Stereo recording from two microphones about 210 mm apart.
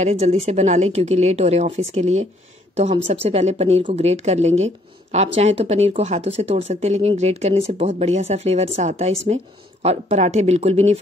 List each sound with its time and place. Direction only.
0.0 s speech: 30° right (ahead or behind)